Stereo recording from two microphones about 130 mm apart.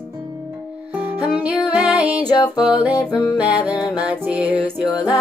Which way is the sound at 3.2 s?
10° right (ahead or behind).